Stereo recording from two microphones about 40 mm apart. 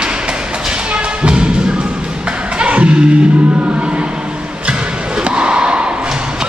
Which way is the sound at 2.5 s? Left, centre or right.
Right.